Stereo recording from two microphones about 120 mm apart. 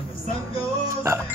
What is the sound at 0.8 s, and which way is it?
Speech, 20° right (ahead or behind).